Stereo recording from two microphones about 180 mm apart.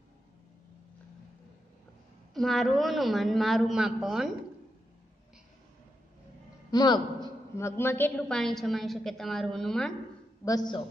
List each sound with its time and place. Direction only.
2.3 s a woman's voice: centre (ahead or behind)
6.7 s a man's voice: 20° left (ahead or behind); by 9.9 s centre (ahead or behind)
10.4 s a man's voice: 20° left (ahead or behind)